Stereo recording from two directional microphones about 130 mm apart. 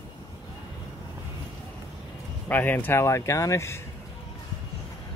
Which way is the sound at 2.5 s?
15° left (ahead or behind).